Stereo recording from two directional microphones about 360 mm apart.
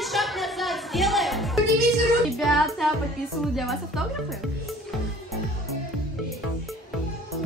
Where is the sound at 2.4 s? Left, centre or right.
Centre.